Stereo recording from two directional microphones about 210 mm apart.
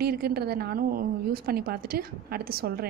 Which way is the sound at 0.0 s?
45° right (ahead or behind).